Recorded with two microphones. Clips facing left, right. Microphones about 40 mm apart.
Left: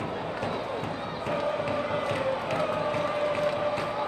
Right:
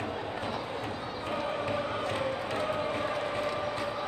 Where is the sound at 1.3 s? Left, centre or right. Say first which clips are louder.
Left 4 dB; left.